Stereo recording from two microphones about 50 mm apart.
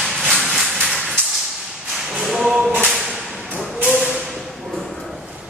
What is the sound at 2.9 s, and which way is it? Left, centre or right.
Whip, centre.